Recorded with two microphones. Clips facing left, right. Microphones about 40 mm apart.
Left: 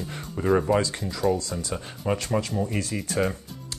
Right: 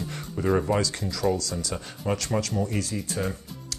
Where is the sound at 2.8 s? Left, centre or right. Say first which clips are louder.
Left 3 dB; left.